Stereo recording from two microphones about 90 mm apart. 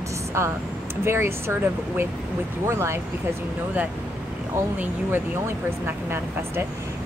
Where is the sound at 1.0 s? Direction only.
30° right (ahead or behind).